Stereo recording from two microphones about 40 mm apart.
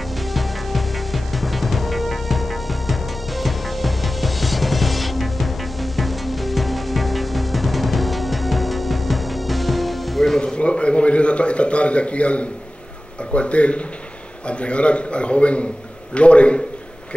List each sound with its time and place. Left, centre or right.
0.3 s music: centre
10.4 s a sound: left
13.3 s a man's voice: left